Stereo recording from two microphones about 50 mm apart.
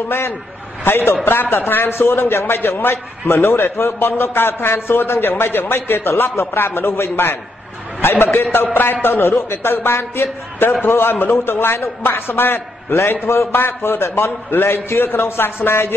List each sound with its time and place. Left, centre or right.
0.8 s a man's voice: left
1.2 s a man's voice: left